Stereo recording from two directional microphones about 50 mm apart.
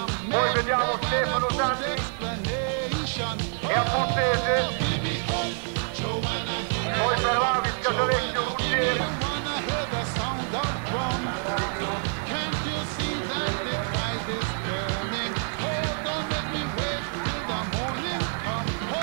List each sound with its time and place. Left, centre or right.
0.3 s music: left
3.6 s music: left
7.0 s music: left
10.6 s music: left